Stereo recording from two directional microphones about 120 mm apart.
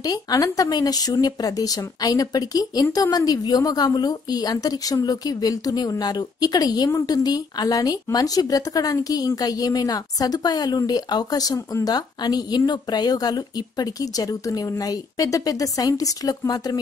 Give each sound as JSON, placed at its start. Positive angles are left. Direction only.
{"t": 0.0, "sound": "speech", "side_deg": 30}